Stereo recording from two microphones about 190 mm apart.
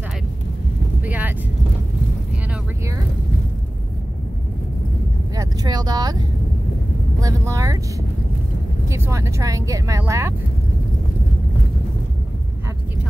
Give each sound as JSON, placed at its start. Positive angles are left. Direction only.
{"t": 1.0, "sound": "vehicle", "side_deg": -10}
{"t": 5.3, "sound": "speech", "side_deg": -20}
{"t": 8.8, "sound": "speech", "side_deg": -15}